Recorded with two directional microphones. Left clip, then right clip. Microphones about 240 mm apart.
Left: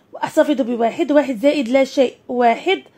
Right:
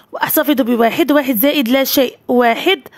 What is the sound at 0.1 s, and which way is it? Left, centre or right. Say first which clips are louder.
A woman's voice: right 1 dB; right.